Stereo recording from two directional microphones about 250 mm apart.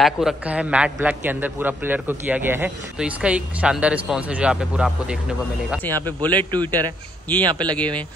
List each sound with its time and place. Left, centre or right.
0.0 s a man's voice: centre
5.9 s speech: centre
6.3 s a man's voice: centre
7.7 s a man's voice: centre